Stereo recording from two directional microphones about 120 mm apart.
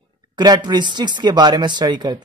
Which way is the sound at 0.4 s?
35° right (ahead or behind).